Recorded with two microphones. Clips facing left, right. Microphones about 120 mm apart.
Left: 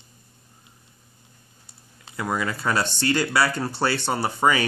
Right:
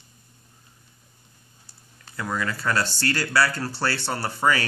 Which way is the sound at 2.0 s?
20° left (ahead or behind).